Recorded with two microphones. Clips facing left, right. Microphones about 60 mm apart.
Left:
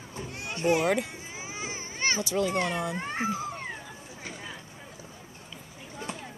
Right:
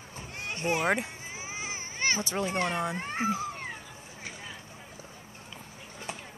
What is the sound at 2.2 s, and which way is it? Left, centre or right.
Speech, right.